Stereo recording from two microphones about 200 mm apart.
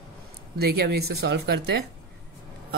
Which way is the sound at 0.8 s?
55° right (ahead or behind).